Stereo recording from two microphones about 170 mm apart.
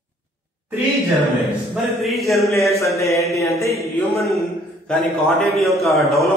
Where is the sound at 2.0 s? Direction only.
Centre (ahead or behind).